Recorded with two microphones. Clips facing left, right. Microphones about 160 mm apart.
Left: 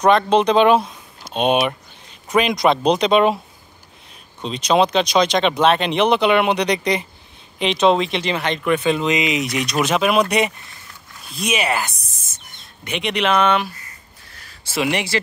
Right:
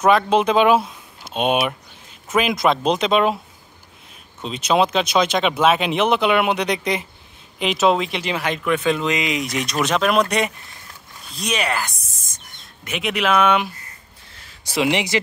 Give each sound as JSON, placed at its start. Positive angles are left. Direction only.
{"t": 0.0, "sound": "speech", "side_deg": -5}
{"t": 4.4, "sound": "speech", "side_deg": -5}
{"t": 14.3, "sound": "a sound", "side_deg": -20}